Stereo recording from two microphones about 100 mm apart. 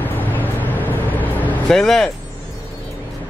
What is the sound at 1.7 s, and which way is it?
Speech, 5° left (ahead or behind).